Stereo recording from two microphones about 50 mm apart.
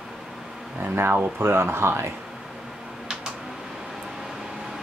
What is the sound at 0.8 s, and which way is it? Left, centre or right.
Speech, right.